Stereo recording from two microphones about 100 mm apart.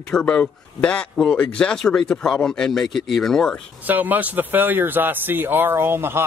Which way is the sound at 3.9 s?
15° right (ahead or behind).